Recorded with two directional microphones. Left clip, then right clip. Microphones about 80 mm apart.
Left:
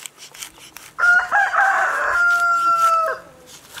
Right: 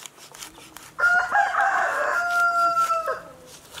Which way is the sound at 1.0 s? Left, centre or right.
Left.